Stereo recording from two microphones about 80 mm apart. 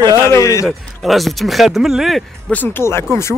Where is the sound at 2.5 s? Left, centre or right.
Left.